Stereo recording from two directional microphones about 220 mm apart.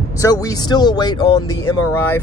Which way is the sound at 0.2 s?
15° left (ahead or behind).